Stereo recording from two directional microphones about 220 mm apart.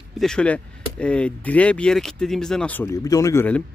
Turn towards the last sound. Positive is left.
turn(degrees=10)  # may be behind; listen again after turning